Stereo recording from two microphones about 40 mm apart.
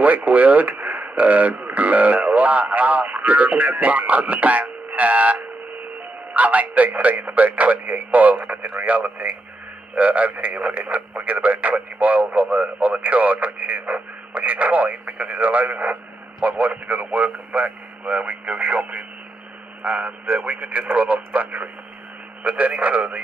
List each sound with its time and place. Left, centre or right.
0.0 s radio: right
6.3 s a man's voice: right